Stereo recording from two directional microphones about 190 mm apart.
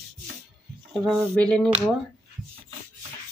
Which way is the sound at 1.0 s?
5° left (ahead or behind).